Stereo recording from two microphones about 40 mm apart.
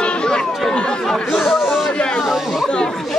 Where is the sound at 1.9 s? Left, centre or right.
Left.